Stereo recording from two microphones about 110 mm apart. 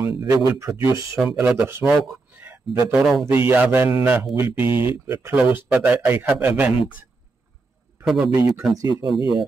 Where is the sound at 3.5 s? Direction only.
20° right (ahead or behind).